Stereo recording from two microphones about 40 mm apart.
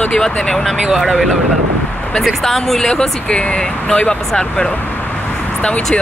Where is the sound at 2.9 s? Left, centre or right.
Left.